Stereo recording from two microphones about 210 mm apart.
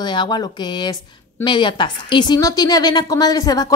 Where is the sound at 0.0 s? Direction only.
20° left (ahead or behind).